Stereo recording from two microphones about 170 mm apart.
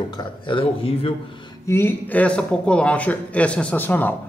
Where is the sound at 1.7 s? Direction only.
15° left (ahead or behind).